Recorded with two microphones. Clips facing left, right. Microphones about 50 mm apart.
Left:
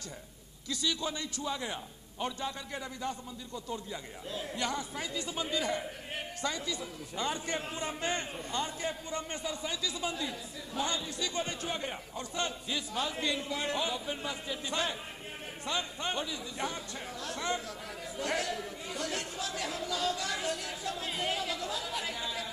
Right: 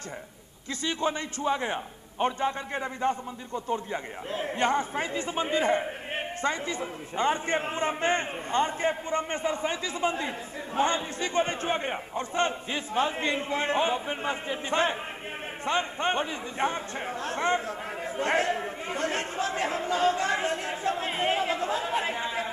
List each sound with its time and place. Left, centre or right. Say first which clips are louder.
0.7 s a man's voice: right 5 dB; right